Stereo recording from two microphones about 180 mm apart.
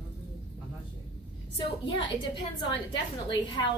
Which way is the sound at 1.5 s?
25° left (ahead or behind).